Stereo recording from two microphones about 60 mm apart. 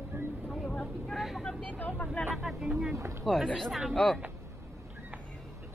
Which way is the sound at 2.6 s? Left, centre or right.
Centre.